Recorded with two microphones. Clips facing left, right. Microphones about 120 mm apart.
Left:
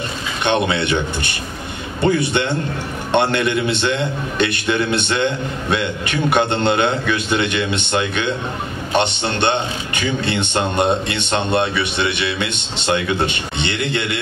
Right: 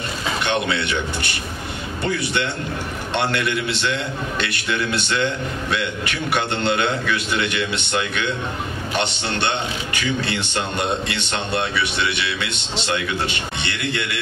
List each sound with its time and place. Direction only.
0.5 s a man's voice: 25° left (ahead or behind)